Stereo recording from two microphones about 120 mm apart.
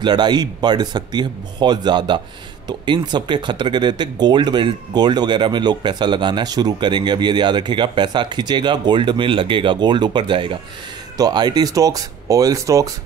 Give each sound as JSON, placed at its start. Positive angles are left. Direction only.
{"t": 0.0, "sound": "speech", "side_deg": -35}